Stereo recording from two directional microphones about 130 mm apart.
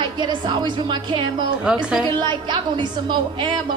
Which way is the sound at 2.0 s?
35° right (ahead or behind).